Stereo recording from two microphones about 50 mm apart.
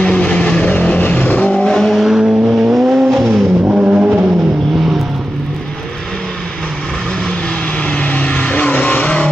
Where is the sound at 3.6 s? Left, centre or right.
Right.